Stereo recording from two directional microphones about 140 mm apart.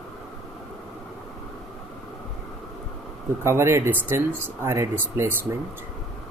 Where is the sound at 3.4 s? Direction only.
20° right (ahead or behind).